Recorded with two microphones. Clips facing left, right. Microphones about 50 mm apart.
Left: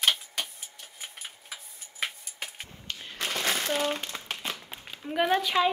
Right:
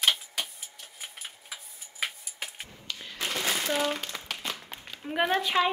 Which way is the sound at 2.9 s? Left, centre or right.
Left.